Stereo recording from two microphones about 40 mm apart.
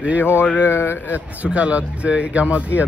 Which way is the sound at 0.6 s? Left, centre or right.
Left.